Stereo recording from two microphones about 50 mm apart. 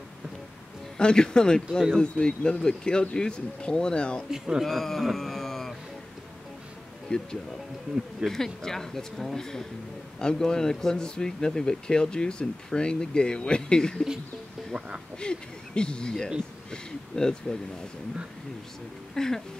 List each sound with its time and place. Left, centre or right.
0.9 s speech: centre
4.3 s speech: centre
4.6 s speech: centre
7.1 s speech: centre
8.3 s speech: centre
15.1 s speech: centre
19.1 s speech: centre